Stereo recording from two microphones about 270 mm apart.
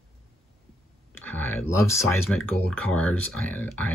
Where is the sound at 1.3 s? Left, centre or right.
Centre.